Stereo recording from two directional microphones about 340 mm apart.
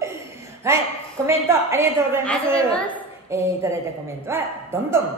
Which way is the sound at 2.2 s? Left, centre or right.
Centre.